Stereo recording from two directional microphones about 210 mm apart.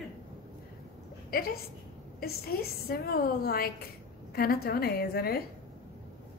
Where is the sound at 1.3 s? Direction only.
45° left (ahead or behind).